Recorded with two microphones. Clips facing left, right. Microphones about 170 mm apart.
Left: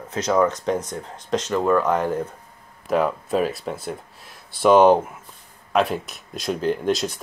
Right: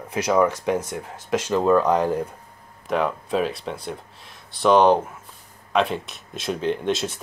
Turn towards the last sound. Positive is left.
turn(degrees=0)  # may be behind; listen again after turning